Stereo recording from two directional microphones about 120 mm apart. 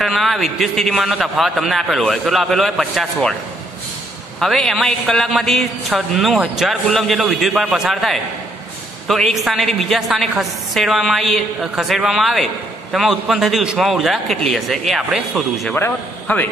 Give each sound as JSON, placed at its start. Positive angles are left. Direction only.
{"t": 0.0, "sound": "a man's voice", "side_deg": 0}
{"t": 4.4, "sound": "a man's voice", "side_deg": 5}
{"t": 15.7, "sound": "a man's voice", "side_deg": 15}